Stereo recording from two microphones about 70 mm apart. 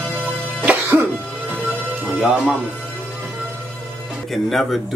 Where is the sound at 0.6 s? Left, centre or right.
Right.